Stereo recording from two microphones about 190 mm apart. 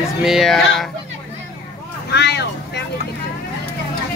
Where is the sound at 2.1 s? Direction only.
65° left (ahead or behind).